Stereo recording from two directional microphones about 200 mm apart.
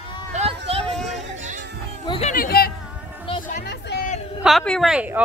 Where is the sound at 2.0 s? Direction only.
30° left (ahead or behind).